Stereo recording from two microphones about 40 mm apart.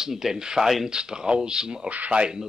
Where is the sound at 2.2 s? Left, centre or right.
Centre.